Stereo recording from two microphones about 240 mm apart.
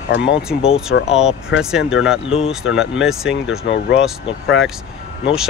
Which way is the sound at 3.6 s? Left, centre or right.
Left.